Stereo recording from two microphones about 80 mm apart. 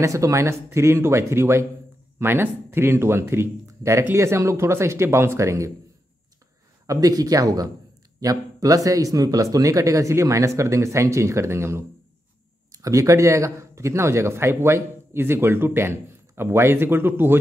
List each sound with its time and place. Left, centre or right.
0.0 s speech: right
6.9 s a man's voice: right